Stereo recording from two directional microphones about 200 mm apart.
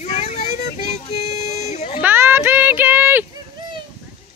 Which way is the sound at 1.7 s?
35° left (ahead or behind).